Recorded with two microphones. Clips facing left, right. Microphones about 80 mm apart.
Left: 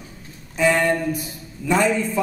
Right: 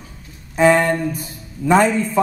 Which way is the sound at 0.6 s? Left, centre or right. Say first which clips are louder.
Right 4 dB; right.